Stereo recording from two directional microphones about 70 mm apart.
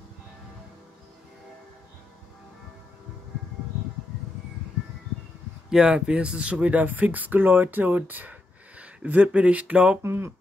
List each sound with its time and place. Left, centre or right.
5.7 s speech: centre
10.0 s speech: right